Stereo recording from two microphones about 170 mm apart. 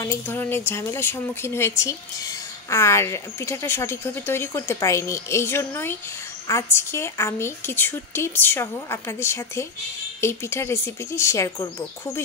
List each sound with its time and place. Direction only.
0.0 s a woman's voice: 15° left (ahead or behind)